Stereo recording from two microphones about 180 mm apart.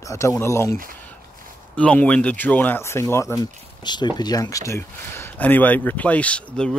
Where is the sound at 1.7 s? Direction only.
10° left (ahead or behind).